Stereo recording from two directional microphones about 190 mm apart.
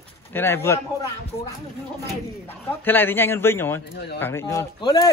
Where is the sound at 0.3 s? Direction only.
10° left (ahead or behind).